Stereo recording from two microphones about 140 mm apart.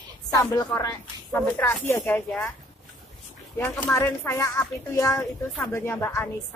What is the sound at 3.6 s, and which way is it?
A woman's voice, 20° left (ahead or behind).